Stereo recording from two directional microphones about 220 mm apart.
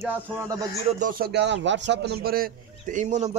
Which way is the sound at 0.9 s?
35° right (ahead or behind).